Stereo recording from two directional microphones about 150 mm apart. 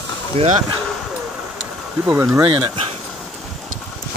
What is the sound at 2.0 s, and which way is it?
Speech, 15° right (ahead or behind).